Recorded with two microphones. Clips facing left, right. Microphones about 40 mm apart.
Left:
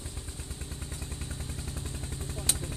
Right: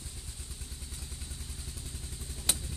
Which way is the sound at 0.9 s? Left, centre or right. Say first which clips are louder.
Left 6 dB; left.